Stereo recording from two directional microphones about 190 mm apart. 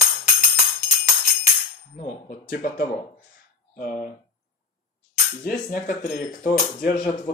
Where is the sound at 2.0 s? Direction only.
45° left (ahead or behind).